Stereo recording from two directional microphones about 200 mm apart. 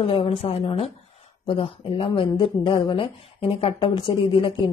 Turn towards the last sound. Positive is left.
turn(degrees=25)  # may be behind; listen again after turning